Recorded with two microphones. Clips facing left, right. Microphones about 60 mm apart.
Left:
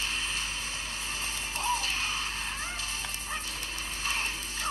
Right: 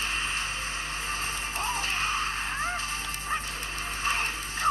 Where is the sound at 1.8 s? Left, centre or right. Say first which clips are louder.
Right 4 dB; right.